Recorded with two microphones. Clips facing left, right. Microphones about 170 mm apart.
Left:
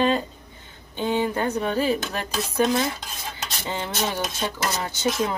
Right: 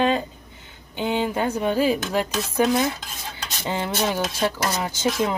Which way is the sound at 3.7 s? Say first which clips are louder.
Right 4 dB; 10° right (ahead or behind).